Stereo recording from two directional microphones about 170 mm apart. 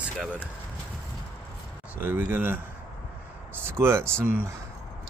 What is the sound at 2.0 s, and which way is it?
Speech, 10° right (ahead or behind).